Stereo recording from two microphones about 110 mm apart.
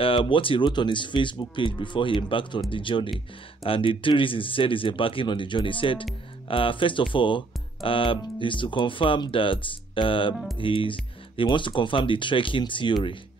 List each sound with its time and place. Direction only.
0.0 s speech: 55° left (ahead or behind)